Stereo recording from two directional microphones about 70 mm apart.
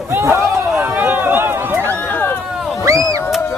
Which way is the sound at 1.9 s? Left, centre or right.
Left.